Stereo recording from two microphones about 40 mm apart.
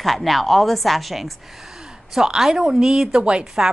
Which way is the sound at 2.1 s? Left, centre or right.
Centre.